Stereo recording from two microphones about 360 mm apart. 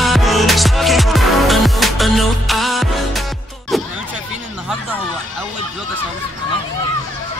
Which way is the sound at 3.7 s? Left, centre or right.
Centre.